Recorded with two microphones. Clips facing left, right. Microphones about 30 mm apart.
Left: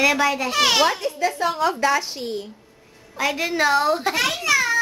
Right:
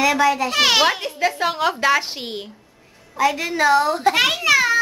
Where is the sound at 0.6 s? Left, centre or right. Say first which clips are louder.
Even; right.